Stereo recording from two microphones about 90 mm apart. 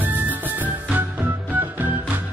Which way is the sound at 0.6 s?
20° right (ahead or behind).